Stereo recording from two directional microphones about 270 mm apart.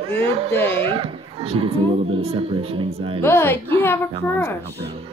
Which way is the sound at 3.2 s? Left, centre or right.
Centre.